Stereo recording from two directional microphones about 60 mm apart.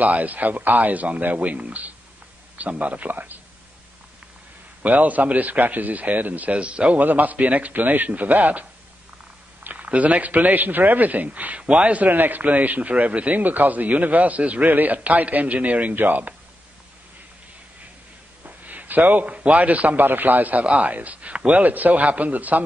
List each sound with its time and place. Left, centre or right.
0.0 s a man's voice: right
4.8 s a man's voice: right
18.4 s a man's voice: right